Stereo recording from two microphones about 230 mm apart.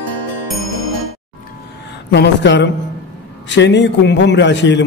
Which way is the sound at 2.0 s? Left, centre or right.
Left.